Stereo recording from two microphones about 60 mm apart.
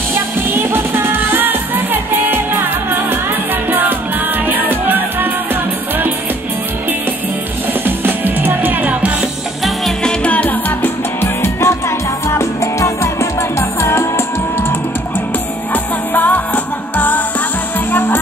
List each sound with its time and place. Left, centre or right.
0.6 s music: right
4.5 s music: right
7.8 s music: right
10.2 s music: left
12.3 s music: left
15.7 s music: left